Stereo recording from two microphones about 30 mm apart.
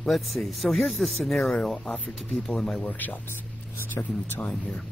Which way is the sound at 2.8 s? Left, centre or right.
Left.